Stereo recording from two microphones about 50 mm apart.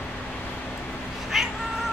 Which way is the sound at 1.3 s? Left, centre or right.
Centre.